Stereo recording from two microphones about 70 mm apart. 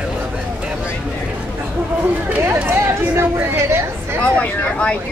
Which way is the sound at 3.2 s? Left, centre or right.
Right.